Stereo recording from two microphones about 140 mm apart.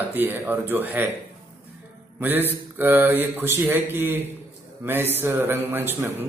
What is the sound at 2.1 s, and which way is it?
Speech, 15° right (ahead or behind).